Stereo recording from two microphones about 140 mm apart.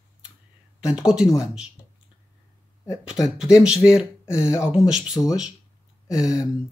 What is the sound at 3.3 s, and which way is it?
Speech, 5° right (ahead or behind).